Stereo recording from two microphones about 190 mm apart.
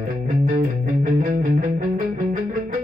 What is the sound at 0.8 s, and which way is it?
Music, 45° right (ahead or behind).